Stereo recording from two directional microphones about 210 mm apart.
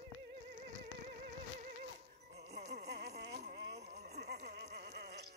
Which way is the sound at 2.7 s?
50° right (ahead or behind).